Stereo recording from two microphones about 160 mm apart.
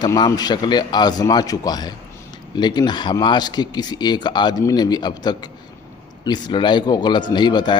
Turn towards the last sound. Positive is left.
turn(degrees=25)  # may be behind; listen again after turning